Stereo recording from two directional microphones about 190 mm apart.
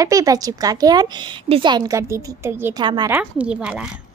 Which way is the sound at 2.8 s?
25° right (ahead or behind).